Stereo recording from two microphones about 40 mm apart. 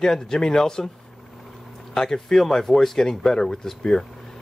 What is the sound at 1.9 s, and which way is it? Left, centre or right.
Speech, centre.